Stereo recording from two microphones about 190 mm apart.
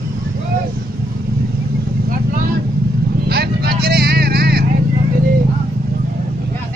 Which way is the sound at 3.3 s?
55° right (ahead or behind).